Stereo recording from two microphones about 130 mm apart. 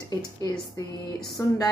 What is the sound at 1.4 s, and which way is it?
Speech, 25° left (ahead or behind).